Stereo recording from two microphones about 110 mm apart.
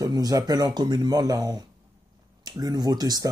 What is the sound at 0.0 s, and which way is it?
Speech, 35° right (ahead or behind).